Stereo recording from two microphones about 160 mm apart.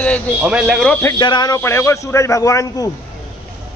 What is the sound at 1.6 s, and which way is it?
A man's voice, 15° left (ahead or behind).